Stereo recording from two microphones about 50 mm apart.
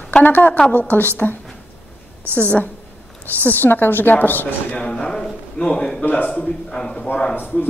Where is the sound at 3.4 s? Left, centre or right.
Left.